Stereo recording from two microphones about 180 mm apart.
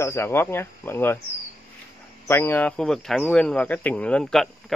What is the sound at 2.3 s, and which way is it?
Speech, 10° left (ahead or behind).